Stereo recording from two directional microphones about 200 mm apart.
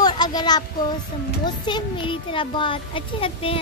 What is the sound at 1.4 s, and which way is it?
A child's voice, 20° left (ahead or behind).